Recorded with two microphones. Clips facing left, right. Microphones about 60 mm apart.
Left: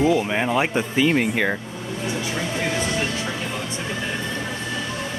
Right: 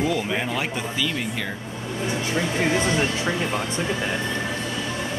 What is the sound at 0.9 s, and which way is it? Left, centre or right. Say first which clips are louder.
Speech: left 11 dB; left.